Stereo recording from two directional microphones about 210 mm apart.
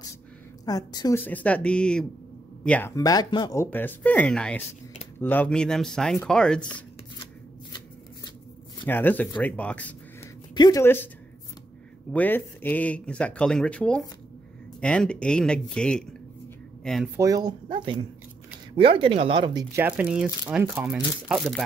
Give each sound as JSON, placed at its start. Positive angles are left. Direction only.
{"t": 0.7, "sound": "speech", "side_deg": 20}
{"t": 3.0, "sound": "speech", "side_deg": 20}
{"t": 8.8, "sound": "speech", "side_deg": 10}
{"t": 10.5, "sound": "speech", "side_deg": 20}
{"t": 12.1, "sound": "speech", "side_deg": 10}
{"t": 17.2, "sound": "speech", "side_deg": -15}
{"t": 18.8, "sound": "speech", "side_deg": -25}
{"t": 19.7, "sound": "speech", "side_deg": -10}